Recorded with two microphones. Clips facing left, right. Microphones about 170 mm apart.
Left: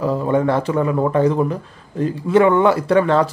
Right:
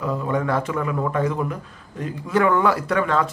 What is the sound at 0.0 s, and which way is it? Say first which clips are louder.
Speech: left 6 dB; 30° left (ahead or behind).